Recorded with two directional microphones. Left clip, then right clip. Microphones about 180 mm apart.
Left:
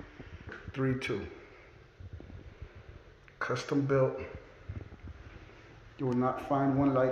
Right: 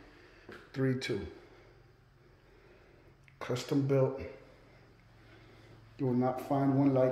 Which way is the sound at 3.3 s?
20° right (ahead or behind).